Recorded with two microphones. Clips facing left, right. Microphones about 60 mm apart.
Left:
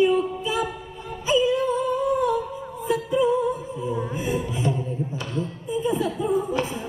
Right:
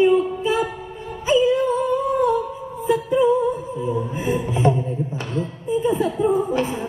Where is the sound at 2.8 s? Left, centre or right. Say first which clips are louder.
Right 4 dB; right.